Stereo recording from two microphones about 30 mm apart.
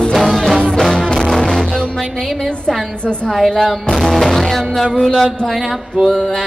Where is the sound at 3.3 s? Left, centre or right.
Centre.